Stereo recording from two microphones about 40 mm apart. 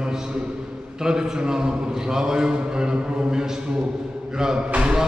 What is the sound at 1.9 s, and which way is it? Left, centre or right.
A man's voice, centre.